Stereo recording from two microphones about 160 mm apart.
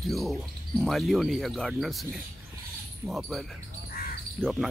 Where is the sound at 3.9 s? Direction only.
65° left (ahead or behind).